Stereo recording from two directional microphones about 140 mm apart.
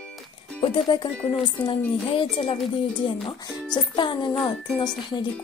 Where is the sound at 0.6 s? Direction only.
35° left (ahead or behind).